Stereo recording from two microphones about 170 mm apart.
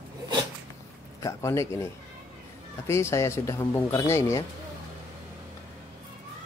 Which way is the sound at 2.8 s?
15° left (ahead or behind).